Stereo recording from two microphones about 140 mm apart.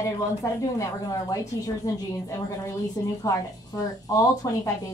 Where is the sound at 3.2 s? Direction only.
25° left (ahead or behind).